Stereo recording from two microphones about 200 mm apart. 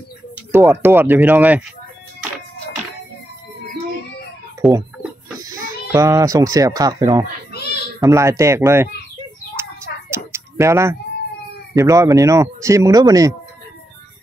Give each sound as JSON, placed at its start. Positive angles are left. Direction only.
{"t": 0.7, "sound": "speech", "side_deg": -10}
{"t": 4.6, "sound": "speech", "side_deg": 0}
{"t": 5.9, "sound": "speech", "side_deg": -15}
{"t": 7.5, "sound": "a sound", "side_deg": 55}
{"t": 8.0, "sound": "speech", "side_deg": -15}
{"t": 9.6, "sound": "a sound", "side_deg": -10}
{"t": 11.7, "sound": "speech", "side_deg": -15}